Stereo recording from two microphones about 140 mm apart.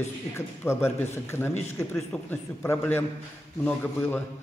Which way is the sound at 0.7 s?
15° left (ahead or behind).